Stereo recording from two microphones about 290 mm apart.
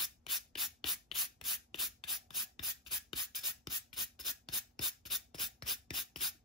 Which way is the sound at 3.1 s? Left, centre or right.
Centre.